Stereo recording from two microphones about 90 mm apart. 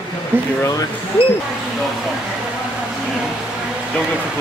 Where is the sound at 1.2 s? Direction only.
90° left.